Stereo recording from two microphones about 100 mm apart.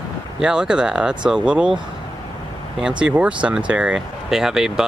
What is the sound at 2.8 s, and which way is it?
Speech, 10° right (ahead or behind).